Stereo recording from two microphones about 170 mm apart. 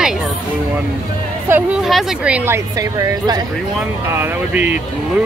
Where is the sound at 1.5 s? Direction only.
5° right (ahead or behind).